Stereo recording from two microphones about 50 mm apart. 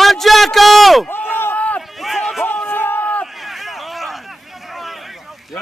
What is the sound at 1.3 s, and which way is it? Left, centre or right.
Run, left.